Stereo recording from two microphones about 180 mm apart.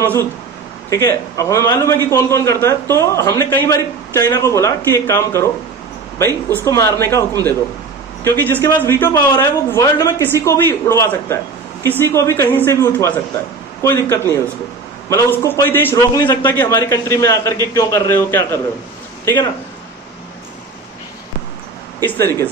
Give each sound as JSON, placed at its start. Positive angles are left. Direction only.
{"t": 0.0, "sound": "a man's voice", "side_deg": 10}
{"t": 22.0, "sound": "a man's voice", "side_deg": 10}